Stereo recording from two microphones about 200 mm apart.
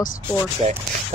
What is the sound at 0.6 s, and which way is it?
Speech, 30° right (ahead or behind).